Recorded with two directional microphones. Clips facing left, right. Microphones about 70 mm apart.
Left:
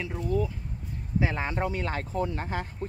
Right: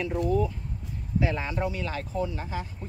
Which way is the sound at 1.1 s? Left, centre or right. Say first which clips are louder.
Even; left.